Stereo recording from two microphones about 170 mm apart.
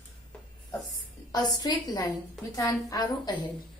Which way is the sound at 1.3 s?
25° left (ahead or behind).